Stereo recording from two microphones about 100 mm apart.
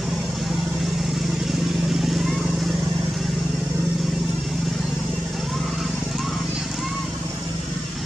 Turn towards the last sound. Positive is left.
turn(degrees=0)  # may be behind; listen again after turning